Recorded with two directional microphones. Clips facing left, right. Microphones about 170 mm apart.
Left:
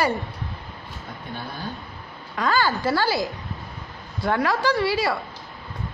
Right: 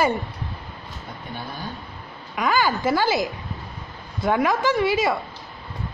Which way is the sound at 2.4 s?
15° right (ahead or behind).